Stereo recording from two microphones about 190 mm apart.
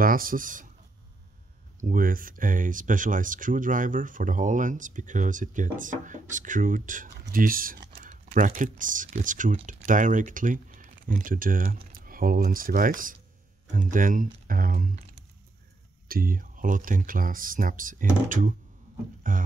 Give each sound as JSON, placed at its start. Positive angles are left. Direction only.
{"t": 0.0, "sound": "speech", "side_deg": -50}
{"t": 1.8, "sound": "speech", "side_deg": -45}
{"t": 16.1, "sound": "speech", "side_deg": -50}